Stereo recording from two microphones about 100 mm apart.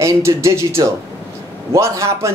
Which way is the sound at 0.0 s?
30° right (ahead or behind).